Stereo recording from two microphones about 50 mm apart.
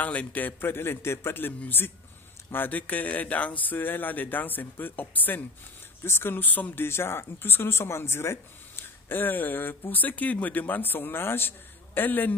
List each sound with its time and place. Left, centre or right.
0.0 s speech: left
6.0 s speech: left
6.8 s speech: left